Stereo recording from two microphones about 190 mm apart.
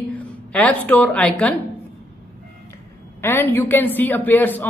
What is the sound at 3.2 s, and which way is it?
A woman's voice, 10° left (ahead or behind).